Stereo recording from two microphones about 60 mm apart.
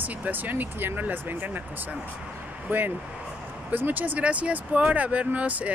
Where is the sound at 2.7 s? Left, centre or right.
Right.